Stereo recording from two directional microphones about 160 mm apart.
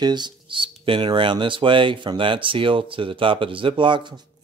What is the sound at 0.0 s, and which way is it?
Speech, 25° right (ahead or behind).